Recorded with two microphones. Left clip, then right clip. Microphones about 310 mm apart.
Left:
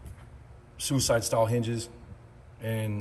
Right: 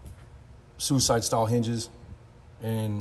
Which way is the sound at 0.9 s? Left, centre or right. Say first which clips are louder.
Right 1 dB; centre.